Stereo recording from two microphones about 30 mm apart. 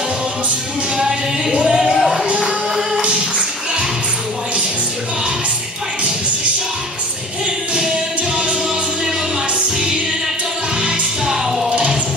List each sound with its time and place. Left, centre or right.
0.9 s speech: centre
1.9 s music: centre
2.4 s music: right
3.0 s a sound: right
8.2 s music: right